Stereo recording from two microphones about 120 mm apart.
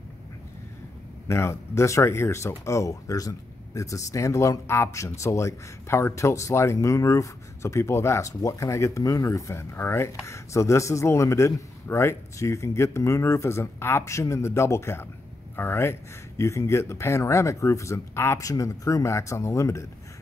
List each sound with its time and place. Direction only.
1.2 s speech: 25° left (ahead or behind)